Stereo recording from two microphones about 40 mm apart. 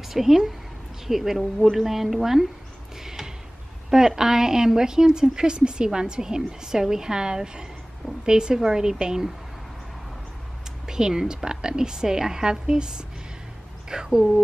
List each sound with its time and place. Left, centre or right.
0.1 s speech: centre
3.0 s a sound: centre
3.9 s a woman's voice: centre
10.9 s speech: centre